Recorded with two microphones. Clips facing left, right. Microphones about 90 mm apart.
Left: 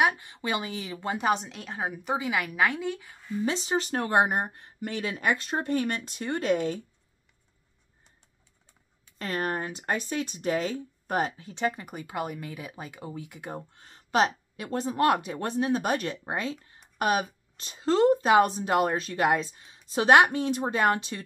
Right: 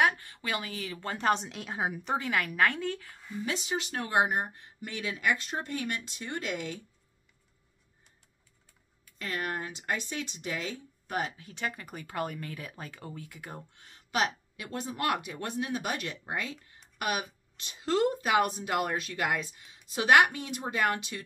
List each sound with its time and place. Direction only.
0.0 s a woman's voice: 20° left (ahead or behind); by 2.0 s 5° right (ahead or behind)
2.0 s a woman's voice: 10° left (ahead or behind)
3.4 s speech: 35° left (ahead or behind)
9.2 s speech: 40° left (ahead or behind)
11.3 s speech: 30° left (ahead or behind)